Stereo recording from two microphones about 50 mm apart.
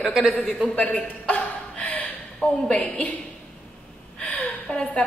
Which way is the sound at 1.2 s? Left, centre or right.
Left.